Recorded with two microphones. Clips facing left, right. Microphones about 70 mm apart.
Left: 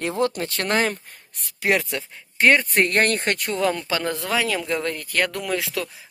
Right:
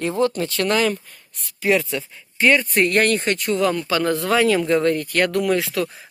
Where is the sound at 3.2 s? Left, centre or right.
Left.